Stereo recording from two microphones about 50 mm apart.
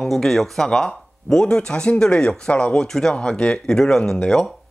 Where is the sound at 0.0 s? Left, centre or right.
Centre.